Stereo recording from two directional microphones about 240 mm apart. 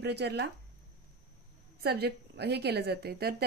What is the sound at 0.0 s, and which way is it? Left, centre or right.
Speech, right.